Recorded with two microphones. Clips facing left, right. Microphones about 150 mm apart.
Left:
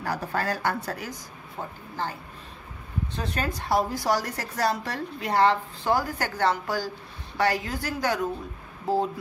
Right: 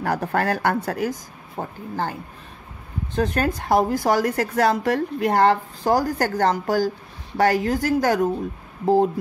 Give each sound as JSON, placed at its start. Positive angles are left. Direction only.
{"t": 0.0, "sound": "a woman's voice", "side_deg": -55}
{"t": 3.2, "sound": "a woman's voice", "side_deg": -50}